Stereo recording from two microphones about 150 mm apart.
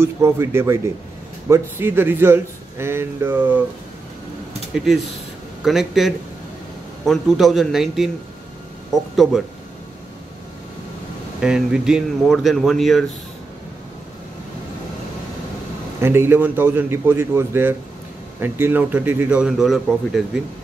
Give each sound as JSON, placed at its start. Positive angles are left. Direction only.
{"t": 0.0, "sound": "a man's voice", "side_deg": -15}
{"t": 4.7, "sound": "speech", "side_deg": -5}
{"t": 11.4, "sound": "speech", "side_deg": -5}
{"t": 16.0, "sound": "a man's voice", "side_deg": -15}